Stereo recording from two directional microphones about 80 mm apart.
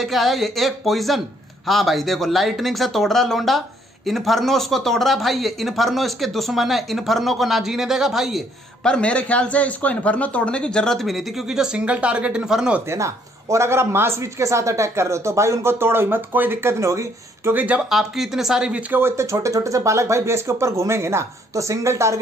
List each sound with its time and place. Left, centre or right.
0.0 s speech: centre
8.8 s speech: centre
12.9 s a man's voice: right
17.6 s speech: centre
17.8 s speech: centre
18.9 s a man's voice: right